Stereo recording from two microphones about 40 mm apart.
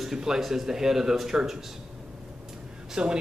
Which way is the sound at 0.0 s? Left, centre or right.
Centre.